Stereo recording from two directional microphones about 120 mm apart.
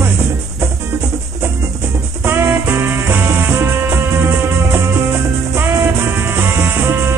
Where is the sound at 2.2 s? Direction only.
20° right (ahead or behind).